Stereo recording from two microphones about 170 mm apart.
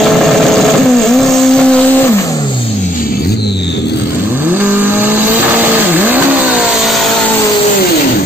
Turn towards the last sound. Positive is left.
turn(degrees=-10)  # may be behind; listen again after turning